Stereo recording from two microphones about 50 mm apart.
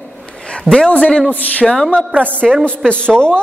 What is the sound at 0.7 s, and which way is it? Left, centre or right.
A woman's voice, centre.